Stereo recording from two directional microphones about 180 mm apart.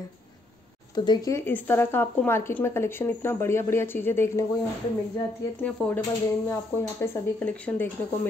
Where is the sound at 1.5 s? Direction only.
10° left (ahead or behind).